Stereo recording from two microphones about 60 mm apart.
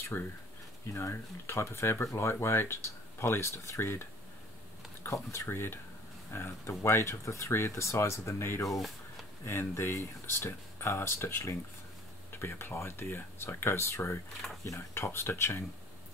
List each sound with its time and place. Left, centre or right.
0.1 s speech: left
5.0 s speech: left
5.5 s speech: left
8.6 s speech: centre
9.5 s speech: left
14.4 s speech: centre
15.0 s speech: left